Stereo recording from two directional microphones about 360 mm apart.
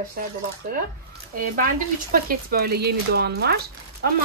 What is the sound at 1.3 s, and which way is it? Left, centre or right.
A woman's voice, right.